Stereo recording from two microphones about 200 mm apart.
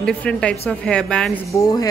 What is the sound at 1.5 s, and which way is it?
Speech, 20° left (ahead or behind).